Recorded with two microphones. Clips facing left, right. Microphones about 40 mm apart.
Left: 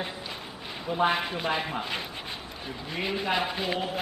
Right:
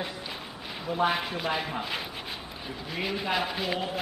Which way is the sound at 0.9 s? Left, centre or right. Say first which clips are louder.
Left 1 dB; centre.